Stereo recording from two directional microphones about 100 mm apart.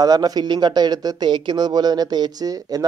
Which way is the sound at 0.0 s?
40° right (ahead or behind).